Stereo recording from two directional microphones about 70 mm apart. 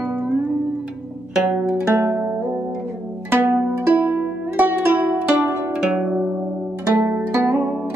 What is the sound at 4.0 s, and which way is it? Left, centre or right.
Music, right.